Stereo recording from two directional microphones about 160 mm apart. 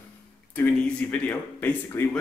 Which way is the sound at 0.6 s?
10° left (ahead or behind).